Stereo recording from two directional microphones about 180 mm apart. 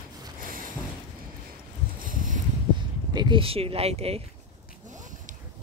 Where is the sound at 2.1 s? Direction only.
50° right (ahead or behind).